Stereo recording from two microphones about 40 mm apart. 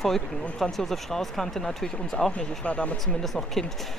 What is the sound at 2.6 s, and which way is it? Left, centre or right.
Speech, left.